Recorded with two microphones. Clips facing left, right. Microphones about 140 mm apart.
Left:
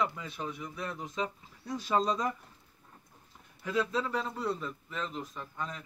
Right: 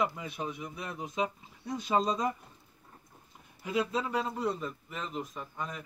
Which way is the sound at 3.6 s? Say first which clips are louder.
Even; 15° right (ahead or behind).